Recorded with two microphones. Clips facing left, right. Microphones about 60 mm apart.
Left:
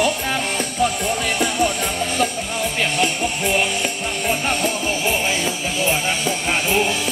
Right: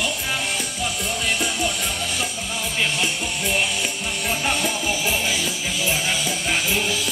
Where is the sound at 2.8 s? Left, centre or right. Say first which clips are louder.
Left 3 dB; left.